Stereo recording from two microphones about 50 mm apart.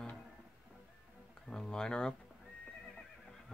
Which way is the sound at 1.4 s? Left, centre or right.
Centre.